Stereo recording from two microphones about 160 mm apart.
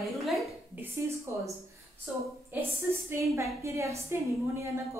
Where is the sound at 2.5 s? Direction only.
10° right (ahead or behind).